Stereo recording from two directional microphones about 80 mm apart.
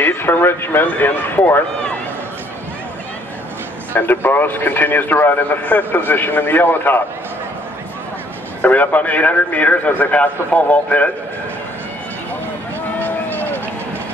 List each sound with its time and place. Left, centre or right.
0.0 s a man's voice: left
3.9 s a man's voice: left
8.6 s a man's voice: centre